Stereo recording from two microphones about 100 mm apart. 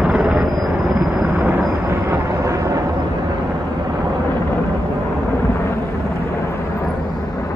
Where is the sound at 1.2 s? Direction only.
25° right (ahead or behind).